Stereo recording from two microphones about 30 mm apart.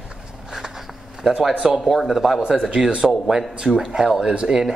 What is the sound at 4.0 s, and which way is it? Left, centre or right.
Speech, centre.